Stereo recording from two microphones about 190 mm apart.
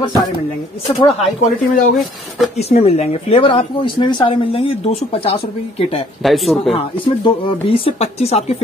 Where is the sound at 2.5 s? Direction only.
35° left (ahead or behind).